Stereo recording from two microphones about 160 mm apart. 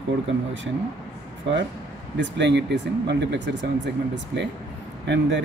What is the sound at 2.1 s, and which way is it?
Speech, 90° right.